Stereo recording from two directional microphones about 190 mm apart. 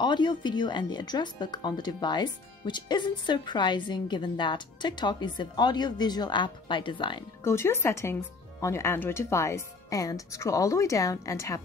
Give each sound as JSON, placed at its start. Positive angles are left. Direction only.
{"t": 0.0, "sound": "speech", "side_deg": 25}
{"t": 7.4, "sound": "speech", "side_deg": 15}